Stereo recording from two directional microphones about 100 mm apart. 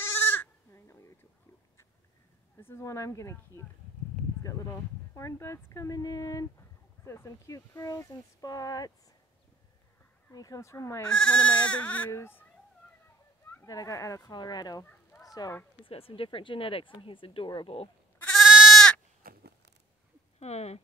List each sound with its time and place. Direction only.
0.0 s bleat: 20° left (ahead or behind)
2.8 s speech: 30° left (ahead or behind)
10.3 s speech: 35° left (ahead or behind)
11.1 s speech: 10° left (ahead or behind)
12.1 s speech: 25° left (ahead or behind)
13.7 s speech: 35° left (ahead or behind)
14.3 s speech: 45° left (ahead or behind)
15.2 s a sound: 40° left (ahead or behind)
15.8 s speech: 65° left (ahead or behind)
17.7 s speech: 90° left
18.4 s goat: 5° right (ahead or behind)
20.3 s speech: 90° left